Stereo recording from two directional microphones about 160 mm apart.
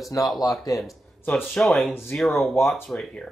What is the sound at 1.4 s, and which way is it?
Speech, 5° left (ahead or behind).